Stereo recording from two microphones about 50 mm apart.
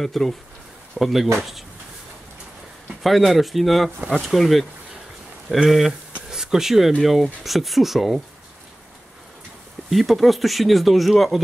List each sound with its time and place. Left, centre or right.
0.0 s speech: centre
0.9 s speech: centre
3.0 s speech: centre
5.7 s speech: centre
9.8 s speech: centre